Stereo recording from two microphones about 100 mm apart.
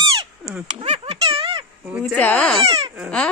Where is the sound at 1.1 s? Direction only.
75° right (ahead or behind).